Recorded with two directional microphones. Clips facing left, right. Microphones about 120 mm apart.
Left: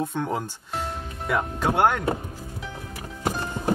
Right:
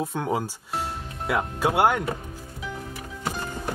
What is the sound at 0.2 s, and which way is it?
Speech, 5° right (ahead or behind).